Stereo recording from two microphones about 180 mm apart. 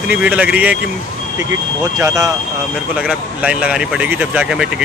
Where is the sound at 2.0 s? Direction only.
20° right (ahead or behind).